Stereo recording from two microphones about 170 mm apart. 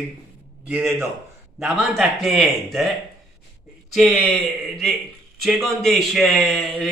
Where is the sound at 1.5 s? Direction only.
Centre (ahead or behind).